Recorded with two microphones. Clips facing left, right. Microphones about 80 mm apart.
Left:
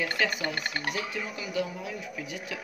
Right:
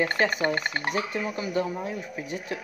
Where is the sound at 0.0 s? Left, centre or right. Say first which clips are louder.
Right 5 dB; right.